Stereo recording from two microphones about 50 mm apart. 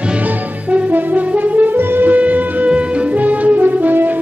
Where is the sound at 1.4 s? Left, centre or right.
Right.